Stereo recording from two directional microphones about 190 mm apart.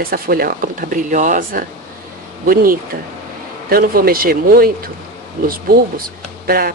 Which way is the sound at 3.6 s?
50° right (ahead or behind).